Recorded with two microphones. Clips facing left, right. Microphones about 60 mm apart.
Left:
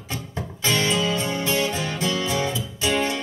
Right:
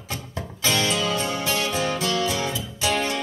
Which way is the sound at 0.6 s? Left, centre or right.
Left.